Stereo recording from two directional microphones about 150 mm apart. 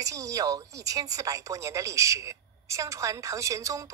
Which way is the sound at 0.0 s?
20° right (ahead or behind).